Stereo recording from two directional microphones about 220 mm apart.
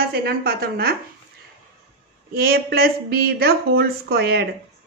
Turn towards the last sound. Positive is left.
turn(degrees=-45)  # may be behind; listen again after turning